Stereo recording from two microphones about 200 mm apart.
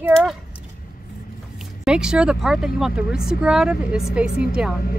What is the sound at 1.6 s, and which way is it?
Speech, 5° right (ahead or behind).